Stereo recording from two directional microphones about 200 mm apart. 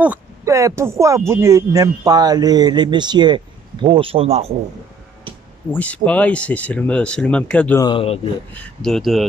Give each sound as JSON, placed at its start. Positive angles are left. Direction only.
{"t": 0.0, "sound": "speech", "side_deg": -10}
{"t": 5.7, "sound": "speech", "side_deg": 5}
{"t": 7.8, "sound": "speech", "side_deg": 25}
{"t": 8.5, "sound": "speech", "side_deg": 0}